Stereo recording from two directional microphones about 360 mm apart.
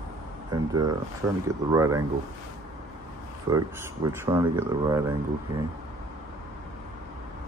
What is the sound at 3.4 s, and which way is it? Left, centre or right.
Speech, centre.